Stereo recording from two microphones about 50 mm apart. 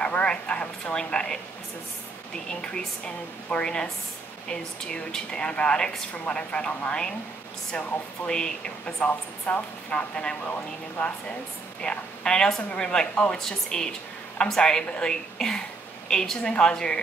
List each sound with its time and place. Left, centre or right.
0.0 s a woman's voice: left
3.4 s a woman's voice: centre
8.3 s a woman's voice: centre
9.0 s a woman's voice: left
13.4 s a woman's voice: centre